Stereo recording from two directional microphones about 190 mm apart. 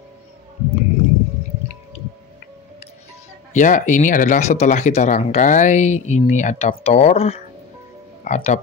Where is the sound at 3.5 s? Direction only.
40° left (ahead or behind).